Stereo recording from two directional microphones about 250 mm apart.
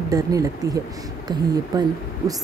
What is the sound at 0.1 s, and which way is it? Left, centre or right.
Speech, centre.